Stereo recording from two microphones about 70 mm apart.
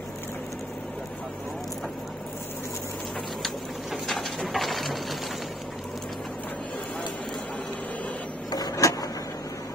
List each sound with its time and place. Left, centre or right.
3.4 s bird: centre
8.5 s vehicle: left